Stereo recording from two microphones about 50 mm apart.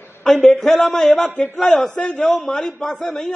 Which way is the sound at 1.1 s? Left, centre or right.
Left.